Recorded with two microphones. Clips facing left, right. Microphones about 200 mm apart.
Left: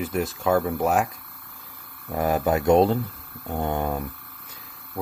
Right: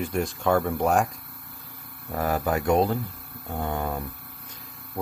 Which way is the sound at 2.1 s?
20° left (ahead or behind).